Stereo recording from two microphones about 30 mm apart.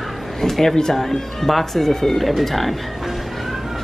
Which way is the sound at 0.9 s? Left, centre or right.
Centre.